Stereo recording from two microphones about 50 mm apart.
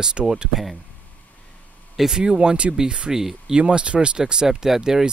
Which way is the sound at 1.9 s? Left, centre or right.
Centre.